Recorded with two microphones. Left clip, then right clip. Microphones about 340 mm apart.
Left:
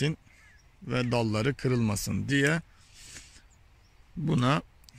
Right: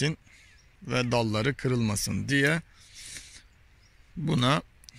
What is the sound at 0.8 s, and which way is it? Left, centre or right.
Speech, centre.